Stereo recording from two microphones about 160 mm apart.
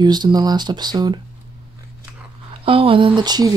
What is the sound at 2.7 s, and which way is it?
Speech, 35° right (ahead or behind).